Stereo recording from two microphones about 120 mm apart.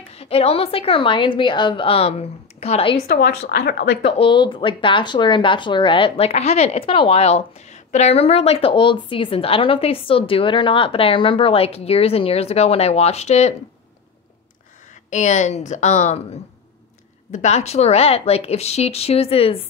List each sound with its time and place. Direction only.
0.1 s speech: 60° left (ahead or behind)
4.0 s speech: 45° left (ahead or behind); by 13.6 s 65° left (ahead or behind)
15.0 s a woman's voice: 90° left; by 19.6 s 55° left (ahead or behind)